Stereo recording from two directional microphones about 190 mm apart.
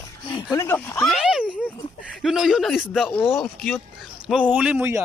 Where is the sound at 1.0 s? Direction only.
Centre (ahead or behind).